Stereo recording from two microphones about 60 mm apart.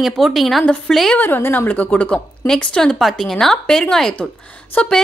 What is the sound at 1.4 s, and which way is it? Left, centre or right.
A woman's voice, left.